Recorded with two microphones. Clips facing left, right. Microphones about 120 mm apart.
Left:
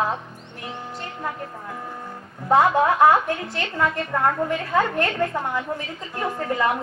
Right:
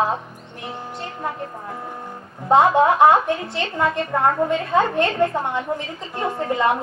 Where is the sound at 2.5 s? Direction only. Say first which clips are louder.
Right 3 dB; 25° right (ahead or behind).